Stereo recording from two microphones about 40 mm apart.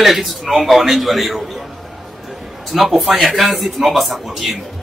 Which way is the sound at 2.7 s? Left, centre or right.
Centre.